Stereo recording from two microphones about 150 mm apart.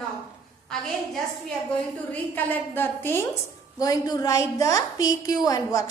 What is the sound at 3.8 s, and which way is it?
A woman's voice, 25° left (ahead or behind).